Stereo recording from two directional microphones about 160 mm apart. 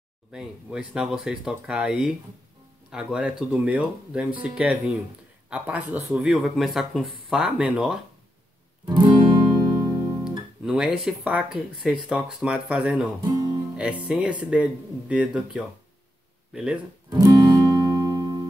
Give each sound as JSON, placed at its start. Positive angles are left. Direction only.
{"t": 0.3, "sound": "speech", "side_deg": -5}
{"t": 8.8, "sound": "music", "side_deg": -25}
{"t": 10.6, "sound": "speech", "side_deg": -5}
{"t": 13.2, "sound": "music", "side_deg": -30}
{"t": 13.7, "sound": "speech", "side_deg": -5}
{"t": 17.1, "sound": "music", "side_deg": -25}